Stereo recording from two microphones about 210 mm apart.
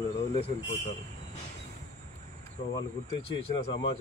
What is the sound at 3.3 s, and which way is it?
Speech, 25° left (ahead or behind).